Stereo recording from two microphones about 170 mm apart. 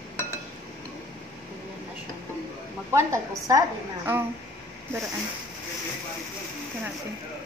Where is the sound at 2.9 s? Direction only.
15° right (ahead or behind).